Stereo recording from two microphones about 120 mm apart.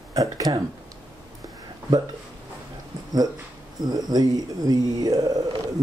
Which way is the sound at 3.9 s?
35° right (ahead or behind).